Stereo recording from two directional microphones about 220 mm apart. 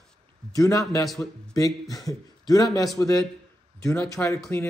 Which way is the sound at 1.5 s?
15° left (ahead or behind).